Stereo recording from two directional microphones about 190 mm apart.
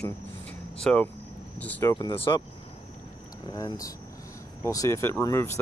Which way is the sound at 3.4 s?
25° left (ahead or behind).